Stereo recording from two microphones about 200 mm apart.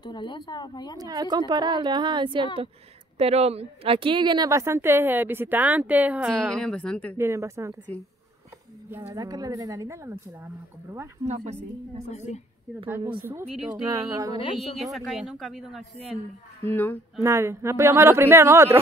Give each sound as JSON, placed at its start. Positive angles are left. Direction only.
{"t": 0.0, "sound": "speech", "side_deg": 20}
{"t": 0.9, "sound": "a woman's voice", "side_deg": -20}
{"t": 6.6, "sound": "speech", "side_deg": 5}
{"t": 7.2, "sound": "a woman's voice", "side_deg": -15}
{"t": 9.1, "sound": "a woman's voice", "side_deg": -20}
{"t": 11.2, "sound": "a woman's voice", "side_deg": -35}
{"t": 12.1, "sound": "a woman's voice", "side_deg": 35}
{"t": 13.2, "sound": "a woman's voice", "side_deg": -10}
{"t": 14.3, "sound": "speech", "side_deg": 30}
{"t": 14.8, "sound": "speech", "side_deg": 0}
{"t": 16.6, "sound": "speech", "side_deg": 10}
{"t": 17.2, "sound": "a woman's voice", "side_deg": -15}